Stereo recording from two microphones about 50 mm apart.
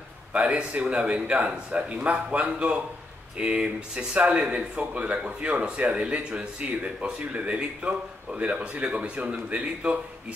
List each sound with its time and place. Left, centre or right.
0.3 s speech: right